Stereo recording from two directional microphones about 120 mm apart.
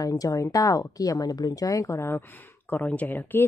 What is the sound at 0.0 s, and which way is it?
Speech, 30° left (ahead or behind).